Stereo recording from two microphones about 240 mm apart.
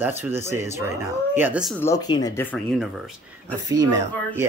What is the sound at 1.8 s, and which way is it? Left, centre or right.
Speech, centre.